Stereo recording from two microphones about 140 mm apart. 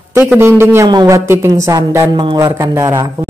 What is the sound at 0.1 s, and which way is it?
A woman's voice, 20° right (ahead or behind).